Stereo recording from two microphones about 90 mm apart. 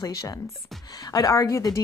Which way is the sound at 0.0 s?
40° left (ahead or behind).